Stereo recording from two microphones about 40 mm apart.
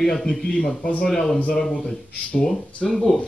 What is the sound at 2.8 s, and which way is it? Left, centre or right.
Speech, centre.